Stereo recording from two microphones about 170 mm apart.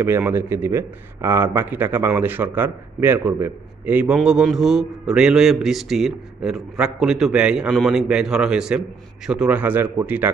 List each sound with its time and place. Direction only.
0.0 s speech: 10° right (ahead or behind)